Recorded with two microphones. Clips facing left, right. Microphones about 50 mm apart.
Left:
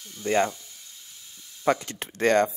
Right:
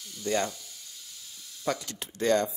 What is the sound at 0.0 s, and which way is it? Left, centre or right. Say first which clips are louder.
Speech: left 5 dB; left.